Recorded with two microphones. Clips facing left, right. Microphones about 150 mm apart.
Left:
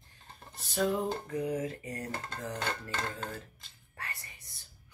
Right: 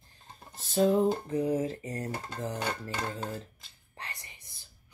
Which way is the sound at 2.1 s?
10° right (ahead or behind).